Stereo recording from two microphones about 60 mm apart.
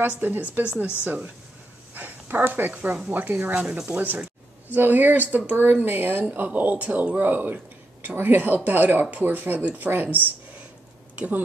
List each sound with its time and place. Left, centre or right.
0.2 s speech: right
2.0 s a sound: right
2.7 s speech: right
3.1 s speech: right